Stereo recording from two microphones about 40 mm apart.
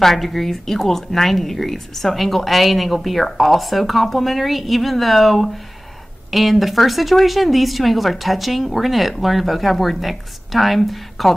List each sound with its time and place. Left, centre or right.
0.0 s speech: centre